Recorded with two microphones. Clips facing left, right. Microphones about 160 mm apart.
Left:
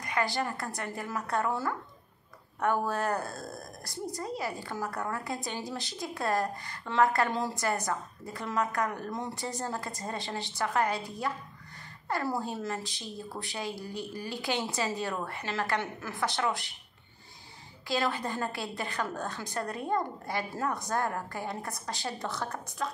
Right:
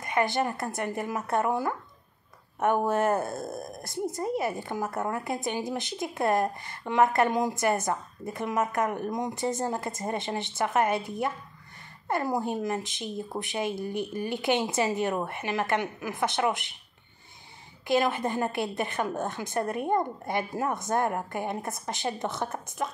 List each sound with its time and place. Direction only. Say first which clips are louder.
0.0 s speech: right 4 dB; 20° right (ahead or behind)
17.8 s speech: right 5 dB; 20° right (ahead or behind)